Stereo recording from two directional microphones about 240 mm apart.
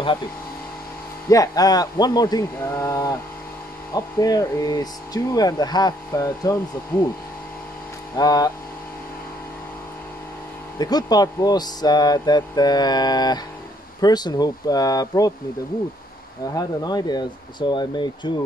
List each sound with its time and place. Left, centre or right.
1.3 s speech: centre
8.2 s speech: centre
10.8 s speech: centre
16.5 s speech: centre